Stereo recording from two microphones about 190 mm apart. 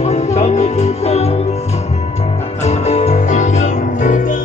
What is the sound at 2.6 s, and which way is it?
Music, 35° left (ahead or behind).